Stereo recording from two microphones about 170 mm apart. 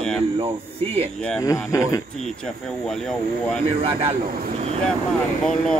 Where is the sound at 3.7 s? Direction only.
35° right (ahead or behind).